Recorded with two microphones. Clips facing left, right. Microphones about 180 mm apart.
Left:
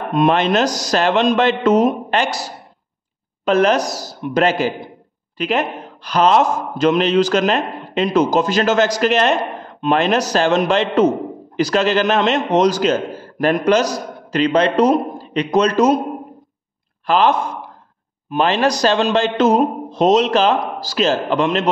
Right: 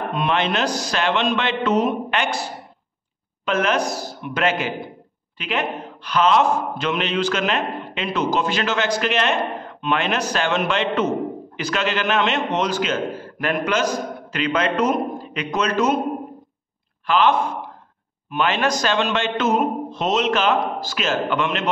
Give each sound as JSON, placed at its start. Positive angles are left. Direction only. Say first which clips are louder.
{"t": 0.1, "sound": "a man's voice", "louder": "left 8 dB", "side_deg": 40}
{"t": 3.4, "sound": "a man's voice", "louder": "left 6 dB", "side_deg": 35}
{"t": 17.0, "sound": "a man's voice", "louder": "left 2 dB", "side_deg": 40}